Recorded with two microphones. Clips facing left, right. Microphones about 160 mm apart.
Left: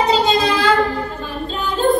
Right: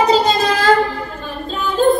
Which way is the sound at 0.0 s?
40° right (ahead or behind).